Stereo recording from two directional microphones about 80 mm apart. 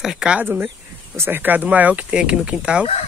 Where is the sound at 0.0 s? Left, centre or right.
Centre.